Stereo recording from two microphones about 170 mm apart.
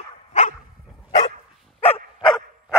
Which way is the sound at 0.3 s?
45° left (ahead or behind).